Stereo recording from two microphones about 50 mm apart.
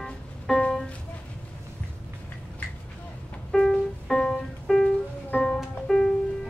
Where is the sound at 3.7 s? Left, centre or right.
Centre.